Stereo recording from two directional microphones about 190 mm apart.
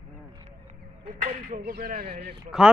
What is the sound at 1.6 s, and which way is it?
Speech, 55° right (ahead or behind).